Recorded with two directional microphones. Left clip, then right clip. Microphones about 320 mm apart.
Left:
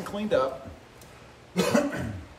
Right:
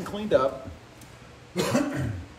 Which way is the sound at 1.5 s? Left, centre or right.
Centre.